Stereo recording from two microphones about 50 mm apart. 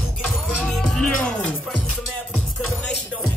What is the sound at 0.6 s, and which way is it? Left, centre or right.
Music, centre.